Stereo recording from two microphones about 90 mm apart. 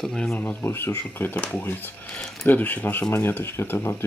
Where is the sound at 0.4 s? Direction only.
20° left (ahead or behind).